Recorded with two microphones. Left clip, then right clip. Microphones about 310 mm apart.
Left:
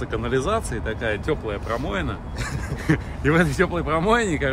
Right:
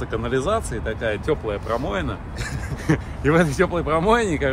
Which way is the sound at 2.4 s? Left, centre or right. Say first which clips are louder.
Even; centre.